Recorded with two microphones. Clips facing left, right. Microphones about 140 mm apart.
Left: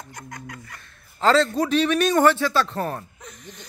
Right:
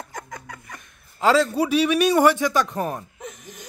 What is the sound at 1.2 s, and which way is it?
A man's voice, 10° right (ahead or behind).